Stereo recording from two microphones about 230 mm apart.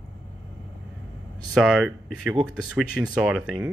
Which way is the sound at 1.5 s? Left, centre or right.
Centre.